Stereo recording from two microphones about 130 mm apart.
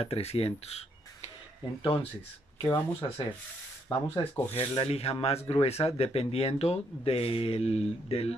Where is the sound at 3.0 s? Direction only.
40° left (ahead or behind).